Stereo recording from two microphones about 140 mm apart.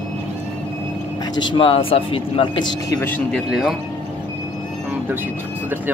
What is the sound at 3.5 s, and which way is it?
Speech, 5° right (ahead or behind).